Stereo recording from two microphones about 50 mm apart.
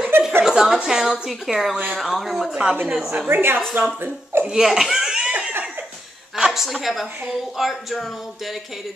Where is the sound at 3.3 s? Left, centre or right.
Right.